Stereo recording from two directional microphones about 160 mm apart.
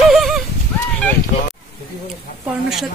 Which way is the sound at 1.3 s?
50° left (ahead or behind).